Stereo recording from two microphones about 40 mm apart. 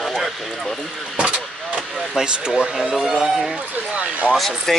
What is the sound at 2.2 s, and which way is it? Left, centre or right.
Speech, centre.